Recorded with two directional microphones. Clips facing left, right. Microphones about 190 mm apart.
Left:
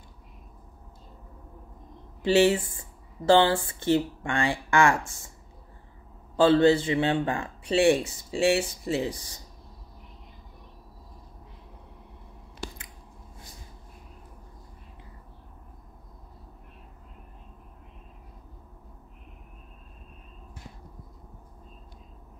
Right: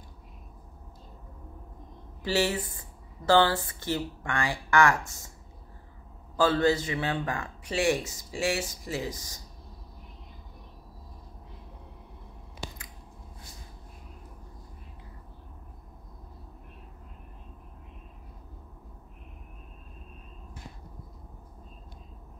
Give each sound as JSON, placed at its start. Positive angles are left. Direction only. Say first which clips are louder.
{"t": 2.2, "sound": "speech", "louder": "left 7 dB", "side_deg": 25}
{"t": 6.3, "sound": "speech", "louder": "left 5 dB", "side_deg": 25}